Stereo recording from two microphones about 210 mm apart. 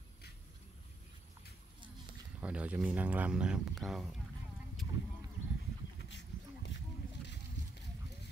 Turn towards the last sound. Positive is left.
turn(degrees=55)  # may be behind; listen again after turning